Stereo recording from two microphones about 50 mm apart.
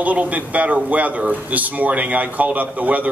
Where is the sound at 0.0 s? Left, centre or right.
Right.